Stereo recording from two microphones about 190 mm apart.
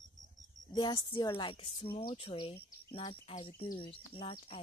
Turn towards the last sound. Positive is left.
turn(degrees=25)  # may be behind; listen again after turning